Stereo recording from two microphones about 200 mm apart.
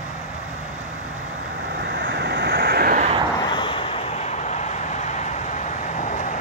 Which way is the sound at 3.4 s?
25° left (ahead or behind).